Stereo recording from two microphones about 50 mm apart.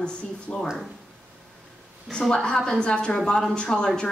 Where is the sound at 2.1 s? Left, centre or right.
Centre.